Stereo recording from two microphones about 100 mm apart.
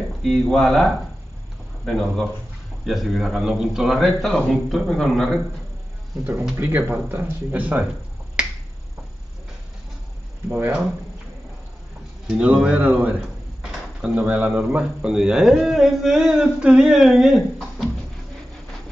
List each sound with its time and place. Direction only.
0.2 s a man's voice: centre (ahead or behind)
6.5 s speech: 20° right (ahead or behind)
10.5 s speech: 20° right (ahead or behind)
12.3 s a man's voice: 10° right (ahead or behind)